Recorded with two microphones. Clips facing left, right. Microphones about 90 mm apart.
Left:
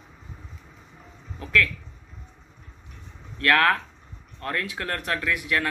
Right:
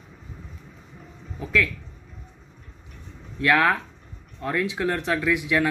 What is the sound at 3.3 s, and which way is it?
Speech, 15° right (ahead or behind).